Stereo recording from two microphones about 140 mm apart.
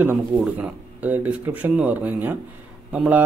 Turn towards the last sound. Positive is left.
turn(degrees=-10)  # may be behind; listen again after turning